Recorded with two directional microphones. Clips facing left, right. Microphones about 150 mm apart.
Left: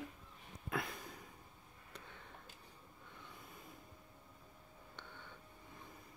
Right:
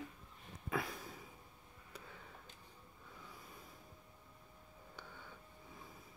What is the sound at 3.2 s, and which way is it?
Snort, centre (ahead or behind).